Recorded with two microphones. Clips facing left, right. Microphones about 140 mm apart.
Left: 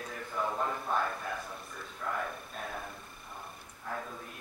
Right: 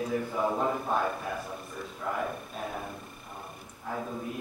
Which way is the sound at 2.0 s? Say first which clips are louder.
Right 4 dB; 5° right (ahead or behind).